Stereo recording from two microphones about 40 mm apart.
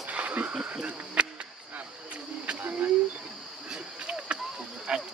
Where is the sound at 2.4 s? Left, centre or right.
Right.